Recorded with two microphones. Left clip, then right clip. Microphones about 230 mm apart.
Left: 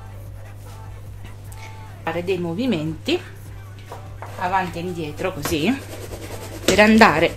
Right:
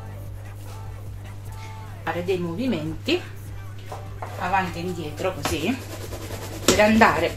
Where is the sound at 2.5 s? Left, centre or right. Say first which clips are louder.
Left 3 dB; left.